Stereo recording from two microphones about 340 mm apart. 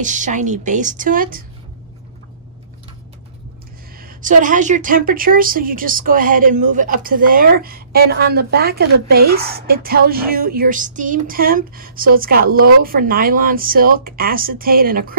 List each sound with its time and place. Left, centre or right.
0.0 s a woman's voice: right
4.0 s a woman's voice: right